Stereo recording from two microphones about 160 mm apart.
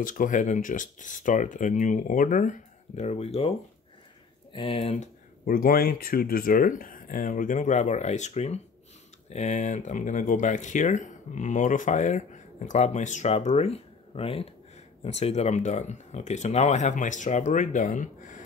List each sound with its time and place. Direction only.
0.0 s speech: 55° left (ahead or behind)
3.0 s speech: 40° left (ahead or behind)
5.4 s speech: 65° left (ahead or behind)